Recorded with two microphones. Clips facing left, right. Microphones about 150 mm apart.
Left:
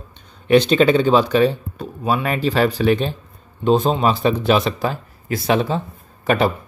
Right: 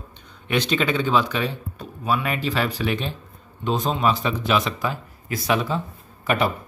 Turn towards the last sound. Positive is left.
turn(degrees=30)  # may be behind; listen again after turning